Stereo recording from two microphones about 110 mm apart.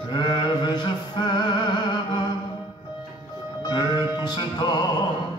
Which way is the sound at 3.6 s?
45° left (ahead or behind).